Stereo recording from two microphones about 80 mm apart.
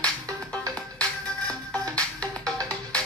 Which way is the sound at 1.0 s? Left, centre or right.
Centre.